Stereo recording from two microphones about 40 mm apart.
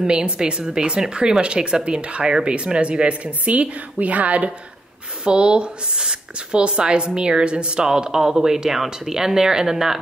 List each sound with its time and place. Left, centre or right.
0.0 s a woman's voice: right
5.2 s speech: right